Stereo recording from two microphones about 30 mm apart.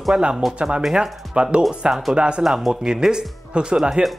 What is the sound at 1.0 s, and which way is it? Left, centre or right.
Speech, right.